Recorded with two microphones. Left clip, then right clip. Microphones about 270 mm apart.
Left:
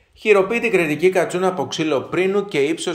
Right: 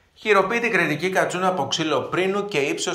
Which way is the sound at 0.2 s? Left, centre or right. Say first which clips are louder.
Left 3 dB; left.